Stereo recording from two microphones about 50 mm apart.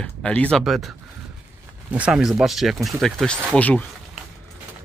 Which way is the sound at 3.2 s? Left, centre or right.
Left.